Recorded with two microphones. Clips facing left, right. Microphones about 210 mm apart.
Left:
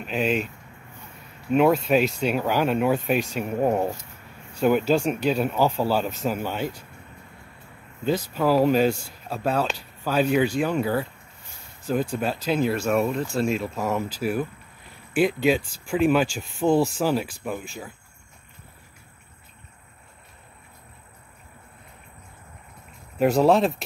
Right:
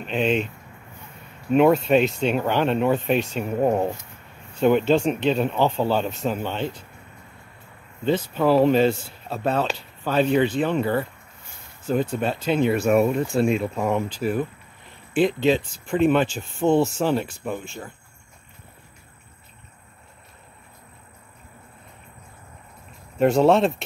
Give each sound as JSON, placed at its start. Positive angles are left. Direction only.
{"t": 0.0, "sound": "speech", "side_deg": 5}
{"t": 1.5, "sound": "speech", "side_deg": 0}
{"t": 8.0, "sound": "speech", "side_deg": 5}
{"t": 12.1, "sound": "speech", "side_deg": 5}
{"t": 16.3, "sound": "speech", "side_deg": -35}
{"t": 16.6, "sound": "speech", "side_deg": 5}
{"t": 23.1, "sound": "speech", "side_deg": 0}